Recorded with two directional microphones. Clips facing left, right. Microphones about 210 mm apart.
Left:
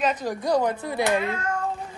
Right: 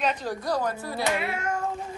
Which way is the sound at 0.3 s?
15° left (ahead or behind).